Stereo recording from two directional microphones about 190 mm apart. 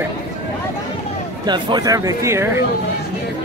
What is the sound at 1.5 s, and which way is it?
Speech, 25° right (ahead or behind).